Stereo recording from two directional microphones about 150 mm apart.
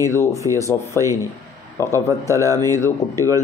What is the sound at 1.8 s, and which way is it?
Speech, 20° left (ahead or behind).